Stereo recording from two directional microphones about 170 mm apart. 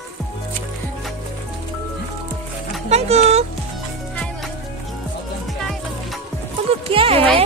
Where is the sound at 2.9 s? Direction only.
40° right (ahead or behind).